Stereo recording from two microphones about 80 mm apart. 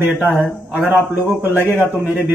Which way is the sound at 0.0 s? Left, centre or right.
Right.